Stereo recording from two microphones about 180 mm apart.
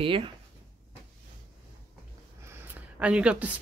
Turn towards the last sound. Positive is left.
turn(degrees=-5)  # may be behind; listen again after turning